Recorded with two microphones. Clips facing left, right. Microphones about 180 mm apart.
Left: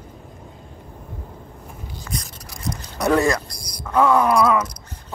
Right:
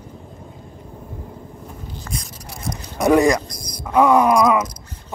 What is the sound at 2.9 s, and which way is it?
Speech, 15° right (ahead or behind).